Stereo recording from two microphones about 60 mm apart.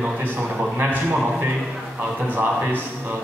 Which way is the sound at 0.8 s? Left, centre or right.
Right.